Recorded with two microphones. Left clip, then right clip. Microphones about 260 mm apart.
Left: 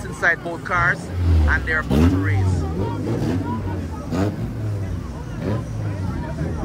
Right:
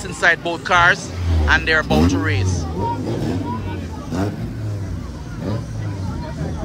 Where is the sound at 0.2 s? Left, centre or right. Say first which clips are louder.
Right 4 dB; centre.